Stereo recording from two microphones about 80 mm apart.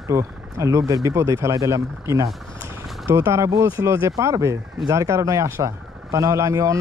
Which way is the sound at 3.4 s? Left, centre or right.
Right.